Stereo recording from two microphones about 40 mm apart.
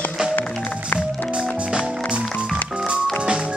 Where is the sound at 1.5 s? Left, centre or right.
Right.